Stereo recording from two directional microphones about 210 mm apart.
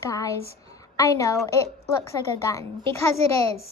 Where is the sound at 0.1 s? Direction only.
15° left (ahead or behind).